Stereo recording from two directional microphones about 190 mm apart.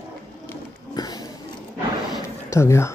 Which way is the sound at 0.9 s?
20° left (ahead or behind).